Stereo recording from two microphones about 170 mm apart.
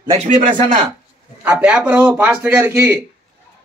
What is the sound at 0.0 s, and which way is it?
Speech, 35° right (ahead or behind).